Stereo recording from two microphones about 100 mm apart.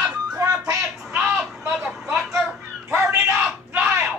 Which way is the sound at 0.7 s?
30° right (ahead or behind).